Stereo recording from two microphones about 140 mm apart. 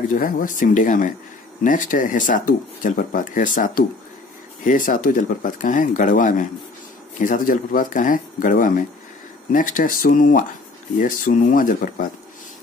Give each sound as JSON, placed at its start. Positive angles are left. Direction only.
{"t": 0.1, "sound": "speech", "side_deg": 70}
{"t": 11.0, "sound": "speech", "side_deg": 75}